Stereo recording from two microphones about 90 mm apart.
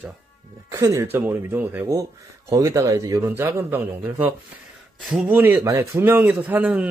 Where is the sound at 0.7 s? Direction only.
35° right (ahead or behind).